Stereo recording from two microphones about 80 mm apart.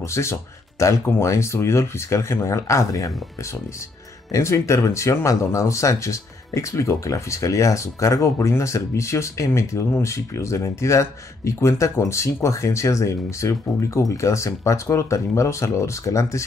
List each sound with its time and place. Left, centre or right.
0.0 s speech: left
4.3 s speech: left